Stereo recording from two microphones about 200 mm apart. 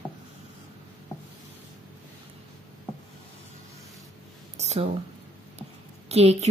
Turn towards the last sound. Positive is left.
turn(degrees=-30)  # may be behind; listen again after turning